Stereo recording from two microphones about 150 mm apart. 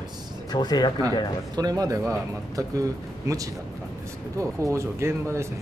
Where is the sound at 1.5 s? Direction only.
25° right (ahead or behind).